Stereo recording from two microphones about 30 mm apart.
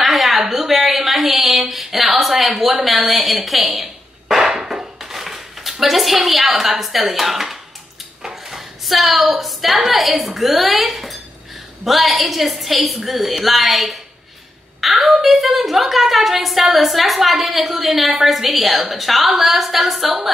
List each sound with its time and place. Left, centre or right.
0.0 s a sound: centre
0.5 s speech: centre
3.4 s a sound: centre
4.5 s dishes: centre
6.8 s a woman's voice: centre
8.2 s dishes: right
8.5 s a woman's voice: centre